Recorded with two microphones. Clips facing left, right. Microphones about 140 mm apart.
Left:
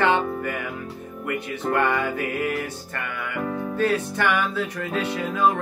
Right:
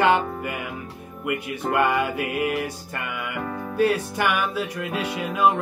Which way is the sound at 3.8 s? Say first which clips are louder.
Right 2 dB; 10° right (ahead or behind).